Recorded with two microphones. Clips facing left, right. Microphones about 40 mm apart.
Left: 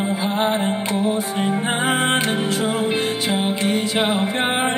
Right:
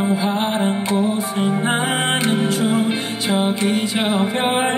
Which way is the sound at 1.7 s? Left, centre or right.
Centre.